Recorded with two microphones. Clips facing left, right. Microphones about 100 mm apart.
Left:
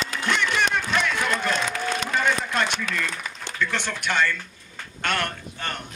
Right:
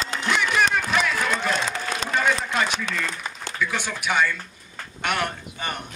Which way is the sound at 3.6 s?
10° right (ahead or behind).